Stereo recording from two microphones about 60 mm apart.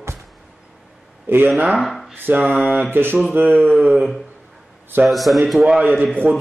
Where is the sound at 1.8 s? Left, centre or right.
Centre.